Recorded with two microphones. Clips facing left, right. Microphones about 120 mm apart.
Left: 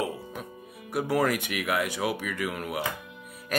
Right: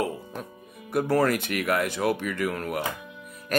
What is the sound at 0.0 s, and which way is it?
Music, 5° left (ahead or behind).